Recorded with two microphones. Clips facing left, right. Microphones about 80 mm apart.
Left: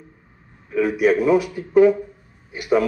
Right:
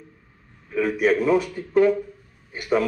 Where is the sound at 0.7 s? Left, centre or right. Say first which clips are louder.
Left 3 dB; centre.